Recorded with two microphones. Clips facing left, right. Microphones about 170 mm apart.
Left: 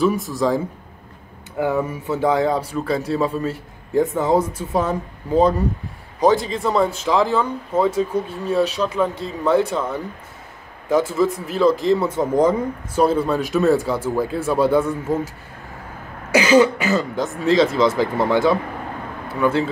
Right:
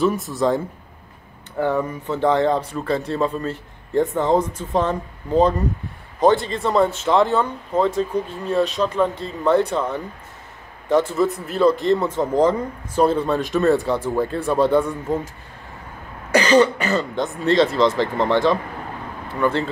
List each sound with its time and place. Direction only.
0.0 s a man's voice: centre (ahead or behind)
1.6 s a man's voice: 5° left (ahead or behind)
16.3 s a man's voice: 5° left (ahead or behind)